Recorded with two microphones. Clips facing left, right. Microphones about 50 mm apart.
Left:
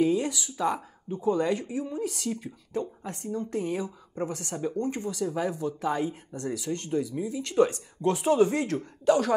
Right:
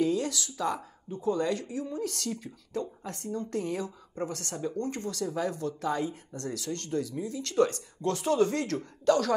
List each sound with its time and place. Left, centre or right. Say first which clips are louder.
0.0 s a woman's voice: left 3 dB; centre